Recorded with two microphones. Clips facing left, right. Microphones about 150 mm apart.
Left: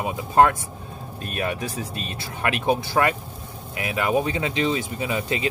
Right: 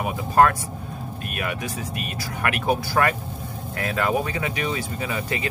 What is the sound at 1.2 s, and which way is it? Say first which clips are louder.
Speech: left 3 dB; 30° left (ahead or behind).